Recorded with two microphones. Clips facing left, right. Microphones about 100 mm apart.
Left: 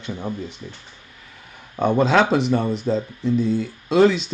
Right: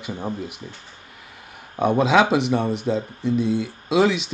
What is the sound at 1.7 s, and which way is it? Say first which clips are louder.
Speech: even; centre (ahead or behind).